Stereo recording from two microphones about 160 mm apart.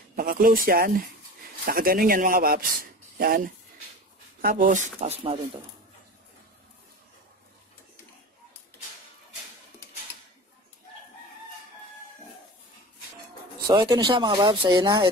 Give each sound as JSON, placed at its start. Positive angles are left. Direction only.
{"t": 0.1, "sound": "speech", "side_deg": -60}
{"t": 13.7, "sound": "speech", "side_deg": -25}